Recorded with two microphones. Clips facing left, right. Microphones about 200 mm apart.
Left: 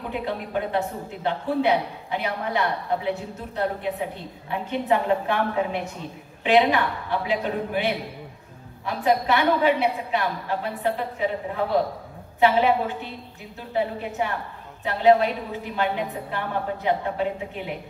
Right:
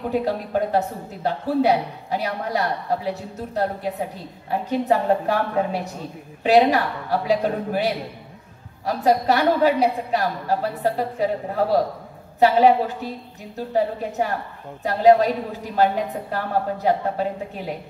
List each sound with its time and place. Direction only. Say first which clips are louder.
0.1 s speech: right 4 dB; 40° right (ahead or behind)